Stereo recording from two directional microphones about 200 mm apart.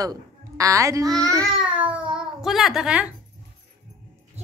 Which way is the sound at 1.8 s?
5° right (ahead or behind).